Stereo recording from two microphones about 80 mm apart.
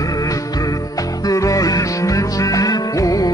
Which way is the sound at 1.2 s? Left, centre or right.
Left.